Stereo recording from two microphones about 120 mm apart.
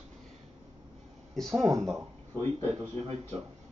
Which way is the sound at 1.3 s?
Centre (ahead or behind).